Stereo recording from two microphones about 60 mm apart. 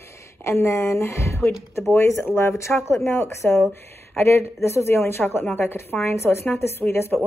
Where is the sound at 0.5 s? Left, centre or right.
Left.